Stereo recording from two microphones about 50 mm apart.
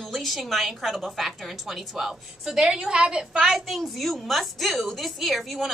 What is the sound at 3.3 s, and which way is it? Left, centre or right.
A woman's voice, centre.